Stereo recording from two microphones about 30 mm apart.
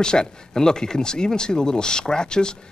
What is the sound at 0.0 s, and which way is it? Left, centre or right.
Speech, left.